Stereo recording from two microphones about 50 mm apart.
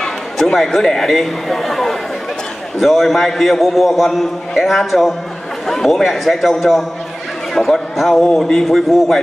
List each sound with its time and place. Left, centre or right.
0.0 s a man's voice: centre